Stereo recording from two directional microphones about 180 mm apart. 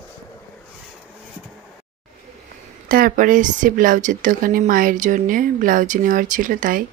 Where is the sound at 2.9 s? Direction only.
50° right (ahead or behind).